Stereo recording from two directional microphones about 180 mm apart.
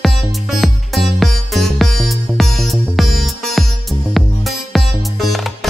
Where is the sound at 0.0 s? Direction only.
Centre (ahead or behind).